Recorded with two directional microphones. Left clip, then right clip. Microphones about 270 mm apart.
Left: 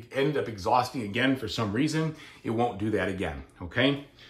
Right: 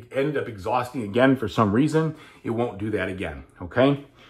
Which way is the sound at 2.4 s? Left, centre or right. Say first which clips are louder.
Right 1 dB; centre.